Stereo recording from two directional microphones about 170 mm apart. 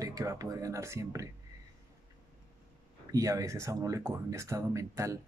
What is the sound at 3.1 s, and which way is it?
Speech, 20° right (ahead or behind).